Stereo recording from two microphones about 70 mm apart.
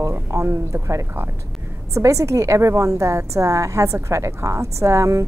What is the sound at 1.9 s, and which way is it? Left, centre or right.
A woman's voice, right.